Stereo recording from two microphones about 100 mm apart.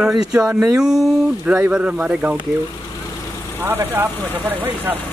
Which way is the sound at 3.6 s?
20° right (ahead or behind).